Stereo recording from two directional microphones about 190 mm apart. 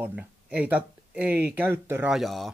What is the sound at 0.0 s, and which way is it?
Speech, 5° right (ahead or behind).